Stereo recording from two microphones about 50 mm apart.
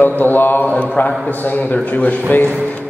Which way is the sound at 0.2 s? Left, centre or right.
Left.